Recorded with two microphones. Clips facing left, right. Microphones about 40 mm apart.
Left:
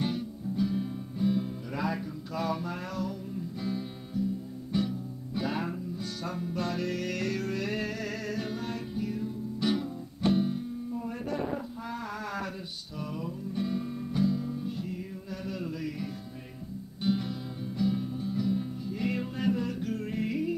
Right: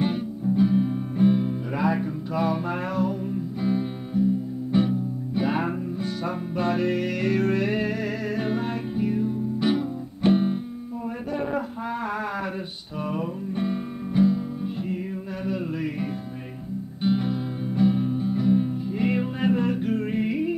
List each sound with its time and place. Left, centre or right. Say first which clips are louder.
0.0 s music: right 7 dB; right
1.1 s music: right 8 dB; right
1.4 s music: right 8 dB; right
2.6 s music: right 9 dB; right
7.3 s music: right 9 dB; right
10.3 s music: right 6 dB; right
13.1 s music: right 6 dB; right
17.0 s music: right 6 dB; right